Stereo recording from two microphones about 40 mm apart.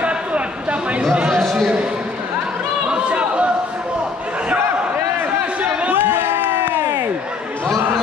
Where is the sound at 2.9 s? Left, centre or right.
Right.